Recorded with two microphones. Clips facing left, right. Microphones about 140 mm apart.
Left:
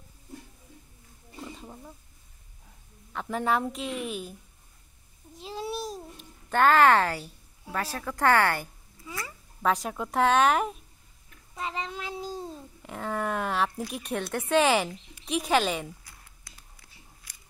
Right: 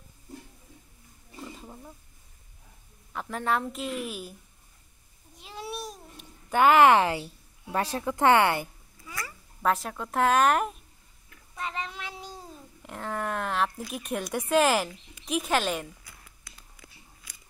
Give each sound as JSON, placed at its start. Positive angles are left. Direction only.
{"t": 1.4, "sound": "wild animals", "side_deg": 0}
{"t": 3.1, "sound": "a woman's voice", "side_deg": 0}
{"t": 5.4, "sound": "babbling", "side_deg": 30}
{"t": 6.5, "sound": "a woman's voice", "side_deg": -15}
{"t": 9.6, "sound": "speech", "side_deg": 0}
{"t": 11.5, "sound": "speech", "side_deg": 25}
{"t": 12.8, "sound": "speech", "side_deg": 0}